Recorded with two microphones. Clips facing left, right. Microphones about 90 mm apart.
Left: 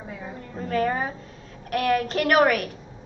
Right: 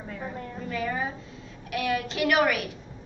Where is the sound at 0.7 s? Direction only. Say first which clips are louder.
Left 6 dB; 50° left (ahead or behind).